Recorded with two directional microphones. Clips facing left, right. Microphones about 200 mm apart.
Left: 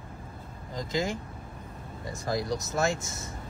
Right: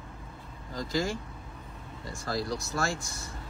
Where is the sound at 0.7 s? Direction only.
20° left (ahead or behind).